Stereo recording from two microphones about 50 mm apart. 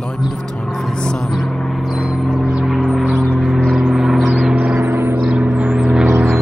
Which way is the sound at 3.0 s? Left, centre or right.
Centre.